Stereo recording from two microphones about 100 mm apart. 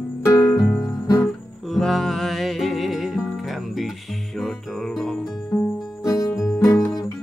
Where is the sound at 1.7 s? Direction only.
Centre (ahead or behind).